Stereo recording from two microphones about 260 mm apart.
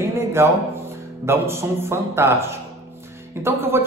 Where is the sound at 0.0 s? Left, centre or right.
Centre.